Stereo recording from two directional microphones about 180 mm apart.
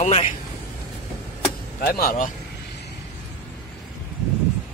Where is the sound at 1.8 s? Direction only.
55° left (ahead or behind).